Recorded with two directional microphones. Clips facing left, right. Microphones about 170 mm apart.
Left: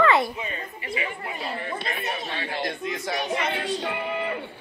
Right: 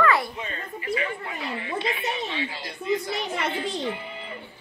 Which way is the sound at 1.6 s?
45° left (ahead or behind).